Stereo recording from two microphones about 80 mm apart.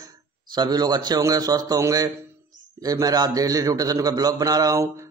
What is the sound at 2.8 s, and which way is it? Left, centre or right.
Speech, right.